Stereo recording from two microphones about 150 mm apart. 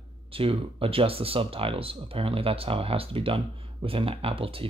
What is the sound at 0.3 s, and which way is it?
Speech, 35° right (ahead or behind).